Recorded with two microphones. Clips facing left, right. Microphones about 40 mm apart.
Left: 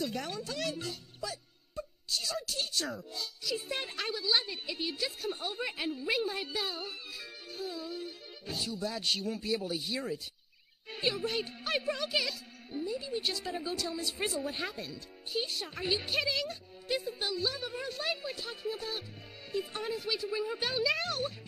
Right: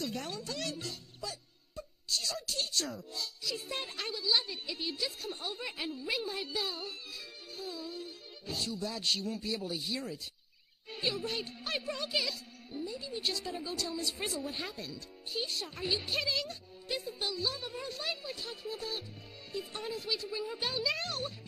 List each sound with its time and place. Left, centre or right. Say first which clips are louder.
0.0 s speech: left 2 dB; centre